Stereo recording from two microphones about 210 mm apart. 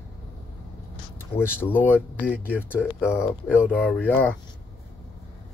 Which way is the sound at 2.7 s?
5° right (ahead or behind).